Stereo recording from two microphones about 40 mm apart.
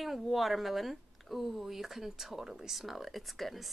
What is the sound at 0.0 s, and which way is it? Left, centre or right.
Speech, centre.